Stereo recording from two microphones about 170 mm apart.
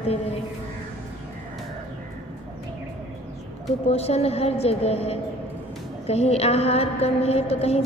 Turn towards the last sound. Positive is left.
turn(degrees=35)  # may be behind; listen again after turning